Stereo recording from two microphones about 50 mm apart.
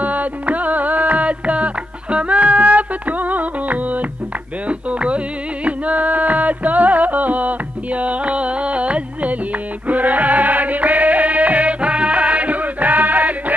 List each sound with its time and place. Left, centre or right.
0.0 s music: right